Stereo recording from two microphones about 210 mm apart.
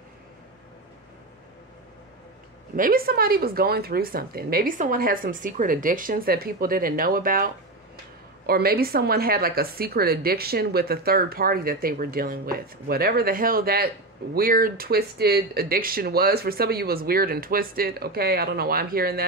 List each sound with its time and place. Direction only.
2.7 s speech: 45° right (ahead or behind)